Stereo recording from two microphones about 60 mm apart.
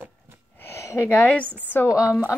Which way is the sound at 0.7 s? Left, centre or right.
Left.